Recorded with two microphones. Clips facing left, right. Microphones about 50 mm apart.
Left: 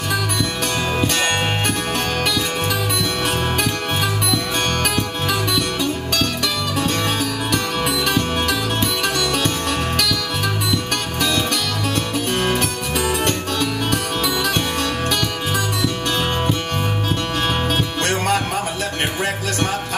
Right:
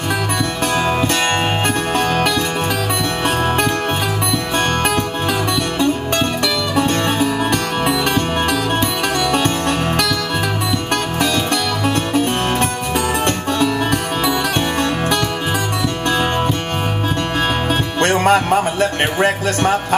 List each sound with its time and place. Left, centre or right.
7.8 s music: right
13.6 s music: right
18.0 s music: right